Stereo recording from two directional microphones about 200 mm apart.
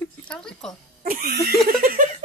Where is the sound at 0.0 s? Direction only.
5° left (ahead or behind).